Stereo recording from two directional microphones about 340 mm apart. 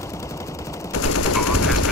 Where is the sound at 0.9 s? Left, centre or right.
Left.